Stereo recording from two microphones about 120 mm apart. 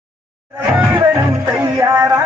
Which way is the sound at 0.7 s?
20° right (ahead or behind).